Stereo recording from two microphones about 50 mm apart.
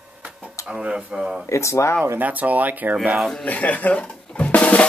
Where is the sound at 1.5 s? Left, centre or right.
Left.